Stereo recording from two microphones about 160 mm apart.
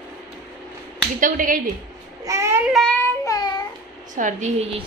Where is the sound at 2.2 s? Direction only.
20° right (ahead or behind).